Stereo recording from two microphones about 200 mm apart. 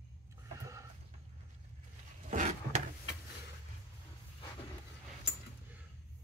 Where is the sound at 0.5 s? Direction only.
15° right (ahead or behind).